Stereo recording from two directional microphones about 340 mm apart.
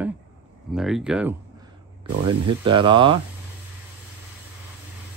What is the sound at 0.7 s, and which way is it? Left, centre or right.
Speech, centre.